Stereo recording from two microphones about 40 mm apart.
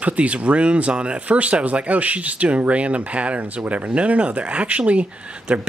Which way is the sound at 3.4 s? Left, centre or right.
Right.